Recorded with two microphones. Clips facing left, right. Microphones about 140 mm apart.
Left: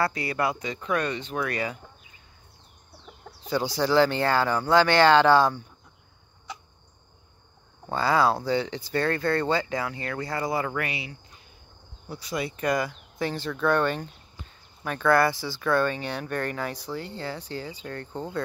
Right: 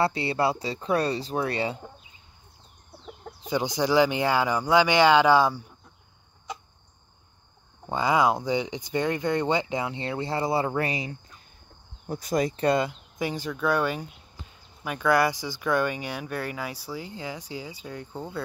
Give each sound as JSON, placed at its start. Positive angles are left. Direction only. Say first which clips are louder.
{"t": 0.0, "sound": "speech", "louder": "right 2 dB", "side_deg": -25}
{"t": 3.3, "sound": "speech", "louder": "even", "side_deg": -20}
{"t": 7.9, "sound": "speech", "louder": "even", "side_deg": -15}
{"t": 13.2, "sound": "speech", "louder": "left 1 dB", "side_deg": -15}